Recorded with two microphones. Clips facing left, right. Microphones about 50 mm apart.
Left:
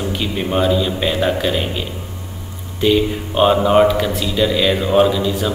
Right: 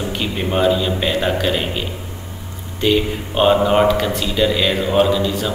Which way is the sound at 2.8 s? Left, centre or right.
Centre.